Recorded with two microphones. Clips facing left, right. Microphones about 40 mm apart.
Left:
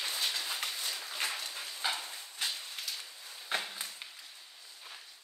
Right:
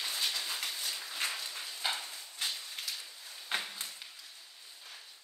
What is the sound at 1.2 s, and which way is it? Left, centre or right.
Dog, left.